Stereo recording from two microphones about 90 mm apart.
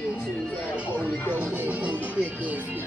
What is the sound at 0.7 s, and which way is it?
Music, 15° right (ahead or behind).